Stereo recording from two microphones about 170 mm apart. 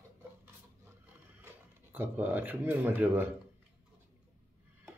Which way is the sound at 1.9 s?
10° right (ahead or behind).